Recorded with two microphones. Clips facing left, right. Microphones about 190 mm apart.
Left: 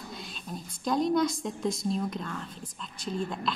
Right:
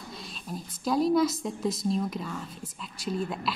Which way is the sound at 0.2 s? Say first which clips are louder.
Right 1 dB; 5° right (ahead or behind).